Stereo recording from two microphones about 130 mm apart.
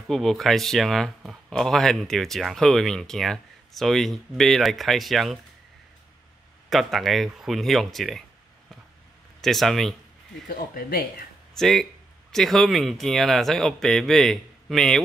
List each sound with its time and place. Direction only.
0.1 s speech: centre (ahead or behind)
6.7 s speech: centre (ahead or behind)
9.4 s speech: centre (ahead or behind)
10.6 s speech: 90° left
11.5 s speech: centre (ahead or behind)